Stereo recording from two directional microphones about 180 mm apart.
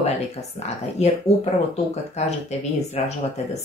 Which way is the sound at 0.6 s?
35° left (ahead or behind).